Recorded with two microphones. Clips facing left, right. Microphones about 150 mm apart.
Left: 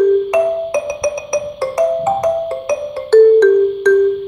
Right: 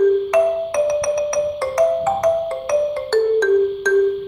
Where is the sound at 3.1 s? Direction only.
5° left (ahead or behind).